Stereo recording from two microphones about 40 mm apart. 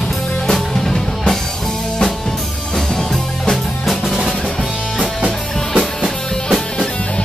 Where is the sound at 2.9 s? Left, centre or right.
Centre.